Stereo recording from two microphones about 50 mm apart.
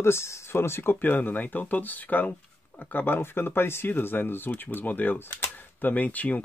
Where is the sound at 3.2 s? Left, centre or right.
Left.